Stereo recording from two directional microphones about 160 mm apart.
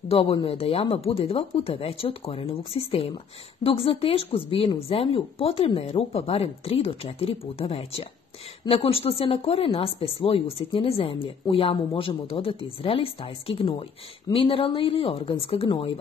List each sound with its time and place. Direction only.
0.1 s a woman's voice: 35° left (ahead or behind)